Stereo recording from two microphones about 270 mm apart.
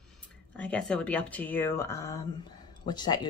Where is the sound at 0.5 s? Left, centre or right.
Centre.